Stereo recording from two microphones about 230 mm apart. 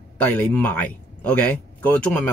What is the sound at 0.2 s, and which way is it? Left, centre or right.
Speech, centre.